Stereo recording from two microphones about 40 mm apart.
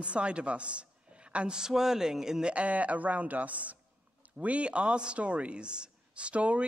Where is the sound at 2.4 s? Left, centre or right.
Right.